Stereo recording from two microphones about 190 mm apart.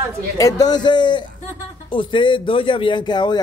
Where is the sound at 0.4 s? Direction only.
20° left (ahead or behind).